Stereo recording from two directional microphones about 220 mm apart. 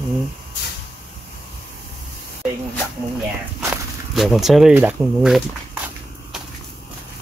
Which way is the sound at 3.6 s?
5° right (ahead or behind).